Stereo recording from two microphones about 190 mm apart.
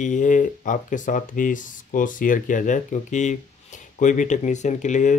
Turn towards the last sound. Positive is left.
turn(degrees=40)  # may be behind; listen again after turning